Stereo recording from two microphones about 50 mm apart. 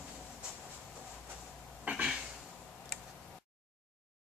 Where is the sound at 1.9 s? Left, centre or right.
Right.